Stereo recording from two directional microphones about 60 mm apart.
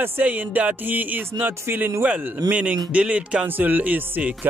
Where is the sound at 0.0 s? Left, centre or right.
Right.